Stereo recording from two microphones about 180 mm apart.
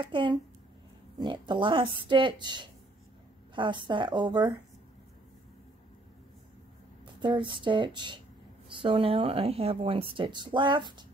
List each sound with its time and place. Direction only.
0.0 s speech: 25° right (ahead or behind)
7.2 s speech: 25° right (ahead or behind)